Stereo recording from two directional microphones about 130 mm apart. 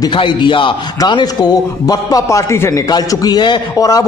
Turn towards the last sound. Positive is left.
turn(degrees=30)  # may be behind; listen again after turning